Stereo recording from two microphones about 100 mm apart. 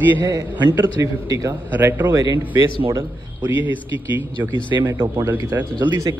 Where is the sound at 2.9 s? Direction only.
30° right (ahead or behind).